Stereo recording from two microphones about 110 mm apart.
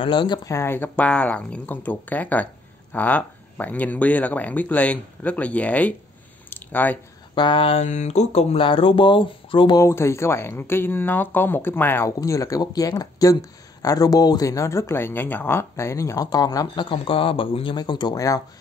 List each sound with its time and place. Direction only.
0.0 s speech: 50° left (ahead or behind)
0.5 s speech: 20° left (ahead or behind)
6.5 s a sound: 15° left (ahead or behind)
7.3 s speech: 50° left (ahead or behind); by 8.6 s 75° left (ahead or behind)
8.6 s speech: 50° left (ahead or behind)
9.8 s speech: 25° left (ahead or behind)
12.2 s speech: 30° left (ahead or behind)
16.9 s speech: 55° left (ahead or behind); by 18.4 s 30° left (ahead or behind)